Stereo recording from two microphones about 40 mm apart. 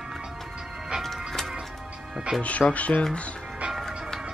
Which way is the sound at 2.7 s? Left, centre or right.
Left.